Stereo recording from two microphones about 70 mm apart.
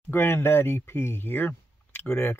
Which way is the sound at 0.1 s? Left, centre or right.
Left.